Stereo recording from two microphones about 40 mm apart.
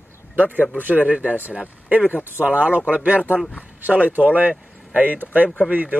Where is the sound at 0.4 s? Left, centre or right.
Right.